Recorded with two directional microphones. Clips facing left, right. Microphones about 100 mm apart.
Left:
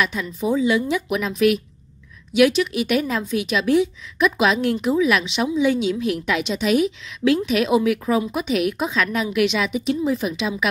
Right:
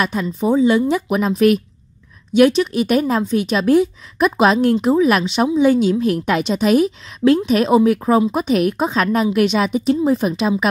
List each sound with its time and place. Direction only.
0.0 s speech: 40° right (ahead or behind)